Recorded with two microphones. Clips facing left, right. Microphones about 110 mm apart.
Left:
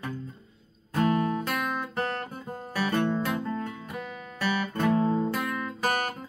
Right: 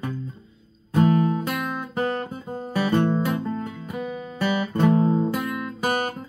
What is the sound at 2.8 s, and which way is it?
Music, 25° right (ahead or behind).